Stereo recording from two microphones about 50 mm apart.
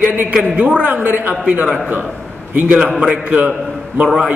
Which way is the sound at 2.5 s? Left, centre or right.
Right.